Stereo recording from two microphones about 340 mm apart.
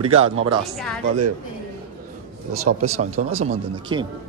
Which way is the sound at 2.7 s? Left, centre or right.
Right.